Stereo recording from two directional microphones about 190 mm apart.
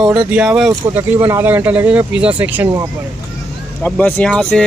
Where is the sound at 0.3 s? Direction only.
5° right (ahead or behind).